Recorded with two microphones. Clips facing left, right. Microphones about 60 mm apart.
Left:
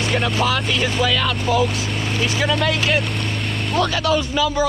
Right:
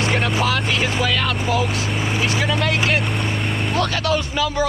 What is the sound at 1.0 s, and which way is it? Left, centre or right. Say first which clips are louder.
Vehicle: left 1 dB; right.